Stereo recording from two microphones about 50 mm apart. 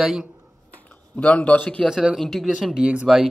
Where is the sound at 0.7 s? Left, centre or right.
Left.